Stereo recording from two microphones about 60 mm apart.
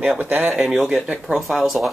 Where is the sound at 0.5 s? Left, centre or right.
Centre.